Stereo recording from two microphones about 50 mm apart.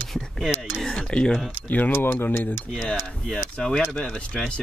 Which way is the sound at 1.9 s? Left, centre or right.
Left.